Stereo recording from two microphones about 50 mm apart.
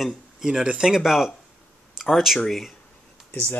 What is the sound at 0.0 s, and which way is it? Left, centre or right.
Speech, centre.